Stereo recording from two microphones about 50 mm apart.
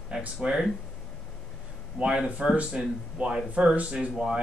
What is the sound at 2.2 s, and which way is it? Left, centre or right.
A man's voice, right.